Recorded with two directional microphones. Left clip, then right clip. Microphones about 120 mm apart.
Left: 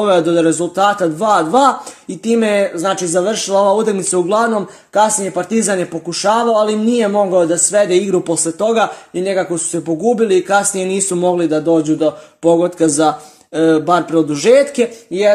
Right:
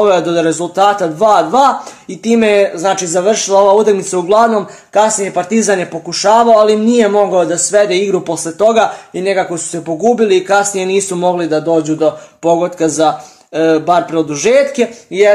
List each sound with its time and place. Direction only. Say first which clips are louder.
0.0 s a man's voice: right 2 dB; 35° left (ahead or behind)